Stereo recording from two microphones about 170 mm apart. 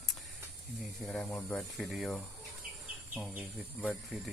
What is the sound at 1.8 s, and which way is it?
Speech, centre (ahead or behind).